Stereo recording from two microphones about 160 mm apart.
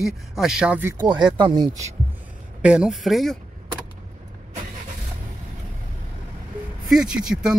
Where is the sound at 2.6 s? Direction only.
5° right (ahead or behind).